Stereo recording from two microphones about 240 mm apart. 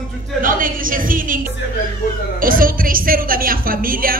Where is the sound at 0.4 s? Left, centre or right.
Right.